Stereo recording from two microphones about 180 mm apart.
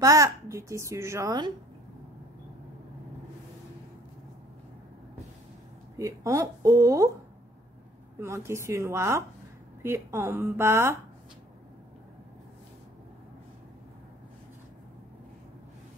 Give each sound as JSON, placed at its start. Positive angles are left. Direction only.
{"t": 0.0, "sound": "a woman's voice", "side_deg": -20}
{"t": 5.9, "sound": "a woman's voice", "side_deg": -15}
{"t": 8.2, "sound": "a woman's voice", "side_deg": -15}